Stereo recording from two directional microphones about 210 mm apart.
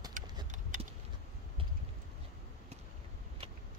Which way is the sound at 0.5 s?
35° right (ahead or behind).